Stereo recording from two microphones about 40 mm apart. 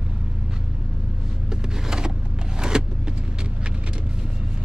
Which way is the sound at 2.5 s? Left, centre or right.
Centre.